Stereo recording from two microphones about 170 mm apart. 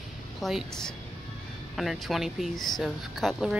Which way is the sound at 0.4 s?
Centre (ahead or behind).